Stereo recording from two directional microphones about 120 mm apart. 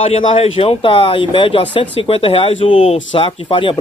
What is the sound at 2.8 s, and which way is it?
Speech, 90° left.